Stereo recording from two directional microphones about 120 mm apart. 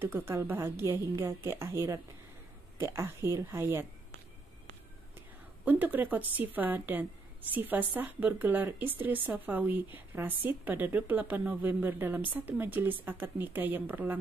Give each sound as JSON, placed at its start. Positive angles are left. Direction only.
{"t": 0.0, "sound": "a woman's voice", "side_deg": -20}
{"t": 5.7, "sound": "a woman's voice", "side_deg": -15}